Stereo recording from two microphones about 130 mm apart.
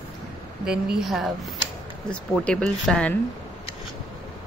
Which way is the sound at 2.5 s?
5° left (ahead or behind).